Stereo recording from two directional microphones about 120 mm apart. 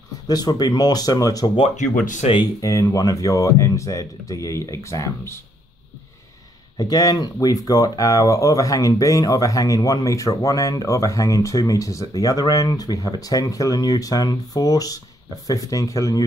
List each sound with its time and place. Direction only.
0.3 s speech: 35° left (ahead or behind)
1.8 s speech: 90° left
2.6 s speech: 25° left (ahead or behind)
6.8 s speech: 30° left (ahead or behind)